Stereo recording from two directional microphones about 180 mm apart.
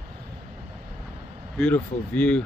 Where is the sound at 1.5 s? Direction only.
5° left (ahead or behind).